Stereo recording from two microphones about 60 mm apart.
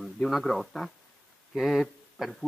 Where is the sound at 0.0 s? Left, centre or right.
Centre.